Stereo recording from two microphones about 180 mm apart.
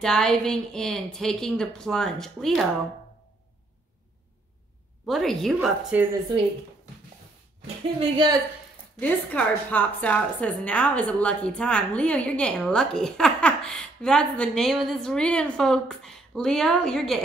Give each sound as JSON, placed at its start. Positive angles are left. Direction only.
{"t": 0.0, "sound": "a woman's voice", "side_deg": 5}
{"t": 5.0, "sound": "a woman's voice", "side_deg": 0}
{"t": 8.0, "sound": "a woman's voice", "side_deg": -25}
{"t": 9.0, "sound": "a woman's voice", "side_deg": 10}